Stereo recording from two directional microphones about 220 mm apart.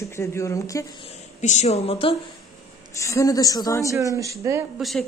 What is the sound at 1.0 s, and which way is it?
A woman's voice, 30° left (ahead or behind).